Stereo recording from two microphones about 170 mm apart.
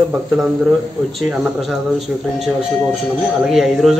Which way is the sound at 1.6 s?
Centre (ahead or behind).